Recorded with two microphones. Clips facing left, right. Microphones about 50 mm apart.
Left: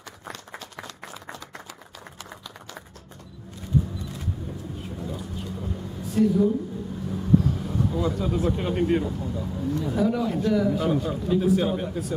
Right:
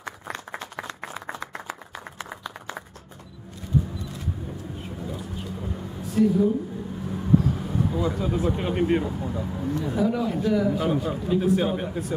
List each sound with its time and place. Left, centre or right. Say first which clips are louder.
0.3 s applause: right 3 dB; right
1.7 s clapping: right 6 dB; right
4.8 s vehicle: even; centre
6.1 s speech: even; centre